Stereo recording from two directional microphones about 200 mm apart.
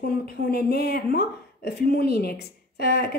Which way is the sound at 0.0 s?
50° left (ahead or behind).